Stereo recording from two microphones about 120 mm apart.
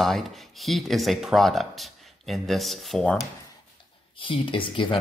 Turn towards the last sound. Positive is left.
turn(degrees=45)  # may be behind; listen again after turning